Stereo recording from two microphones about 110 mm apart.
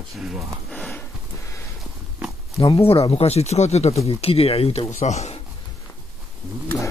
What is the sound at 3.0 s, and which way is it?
Speech, 65° left (ahead or behind).